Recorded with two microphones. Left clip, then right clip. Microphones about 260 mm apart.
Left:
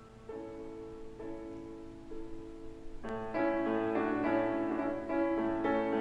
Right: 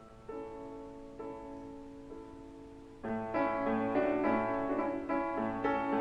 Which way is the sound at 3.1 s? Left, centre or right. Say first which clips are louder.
Even; right.